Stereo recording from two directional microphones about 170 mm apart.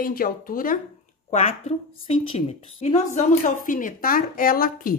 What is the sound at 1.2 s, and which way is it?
A woman's voice, 40° left (ahead or behind).